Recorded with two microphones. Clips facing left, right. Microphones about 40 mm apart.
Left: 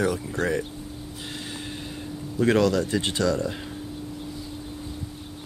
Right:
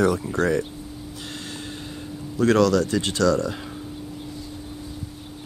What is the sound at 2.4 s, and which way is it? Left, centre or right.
Speech, centre.